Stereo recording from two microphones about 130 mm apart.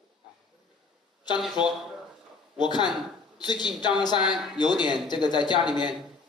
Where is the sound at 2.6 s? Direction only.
35° left (ahead or behind).